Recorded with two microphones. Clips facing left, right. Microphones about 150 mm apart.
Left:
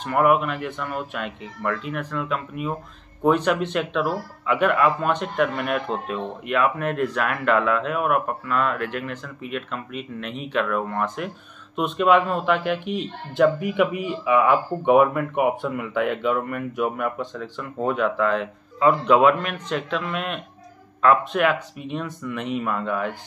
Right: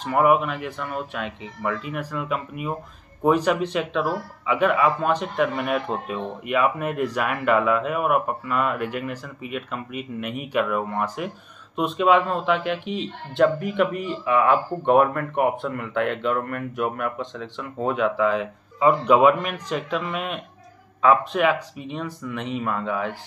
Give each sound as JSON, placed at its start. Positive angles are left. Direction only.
{"t": 0.0, "sound": "speech", "side_deg": 0}